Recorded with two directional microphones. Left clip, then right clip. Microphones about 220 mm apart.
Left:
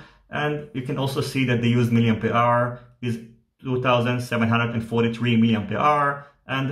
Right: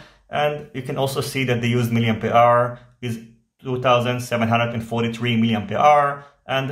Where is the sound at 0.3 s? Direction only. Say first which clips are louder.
Right 4 dB; 15° right (ahead or behind).